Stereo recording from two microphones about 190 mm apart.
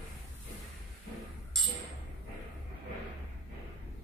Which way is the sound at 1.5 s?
Centre (ahead or behind).